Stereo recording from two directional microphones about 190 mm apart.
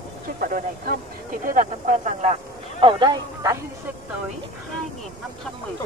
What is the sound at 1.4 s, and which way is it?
Speech, 45° right (ahead or behind).